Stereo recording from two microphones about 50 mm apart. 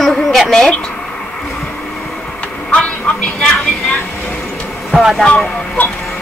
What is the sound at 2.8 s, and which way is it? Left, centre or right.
Music, left.